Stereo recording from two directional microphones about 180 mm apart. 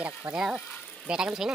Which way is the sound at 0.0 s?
5° right (ahead or behind).